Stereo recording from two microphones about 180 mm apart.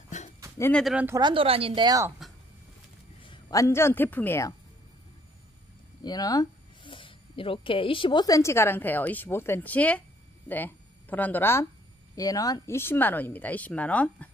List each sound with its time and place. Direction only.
0.1 s a sound: 40° left (ahead or behind)
0.6 s speech: 5° left (ahead or behind)
0.9 s speech: 15° right (ahead or behind)
1.2 s a woman's voice: 30° right (ahead or behind)
3.2 s a man's voice: 20° left (ahead or behind)
6.0 s speech: 20° left (ahead or behind)